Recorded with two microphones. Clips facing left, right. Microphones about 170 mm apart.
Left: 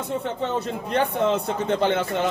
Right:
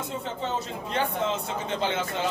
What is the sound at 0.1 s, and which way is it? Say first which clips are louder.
A man's voice: left 7 dB; 60° left (ahead or behind).